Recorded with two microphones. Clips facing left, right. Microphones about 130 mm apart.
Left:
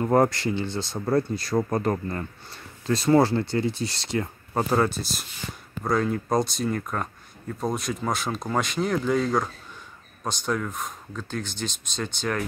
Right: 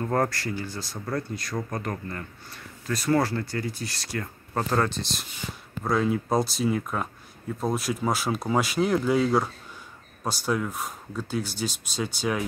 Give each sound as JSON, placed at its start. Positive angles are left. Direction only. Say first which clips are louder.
{"t": 0.0, "sound": "speech", "louder": "left 5 dB", "side_deg": 20}
{"t": 4.6, "sound": "speech", "louder": "left 2 dB", "side_deg": 10}